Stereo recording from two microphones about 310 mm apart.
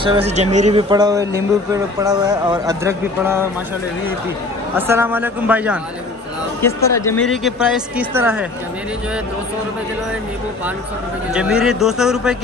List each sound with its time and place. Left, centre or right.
0.0 s speech: centre
4.7 s speech: centre
6.6 s speech: centre
11.3 s speech: centre